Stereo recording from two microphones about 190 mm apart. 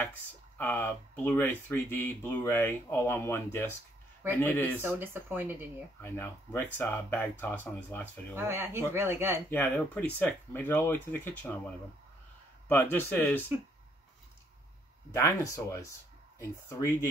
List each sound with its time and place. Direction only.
0.0 s speech: 10° left (ahead or behind)
4.8 s speech: 10° right (ahead or behind)
5.9 s speech: 10° left (ahead or behind)
8.4 s speech: 10° right (ahead or behind)
9.5 s speech: 10° left (ahead or behind)
12.6 s speech: 10° left (ahead or behind)
15.2 s speech: 15° left (ahead or behind)